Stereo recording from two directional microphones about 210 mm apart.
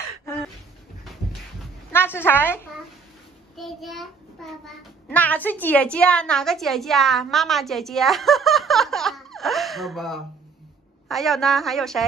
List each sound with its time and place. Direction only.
1.9 s a child's voice: 10° left (ahead or behind)